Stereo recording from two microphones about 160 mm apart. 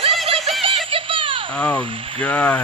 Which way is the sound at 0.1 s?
Centre (ahead or behind).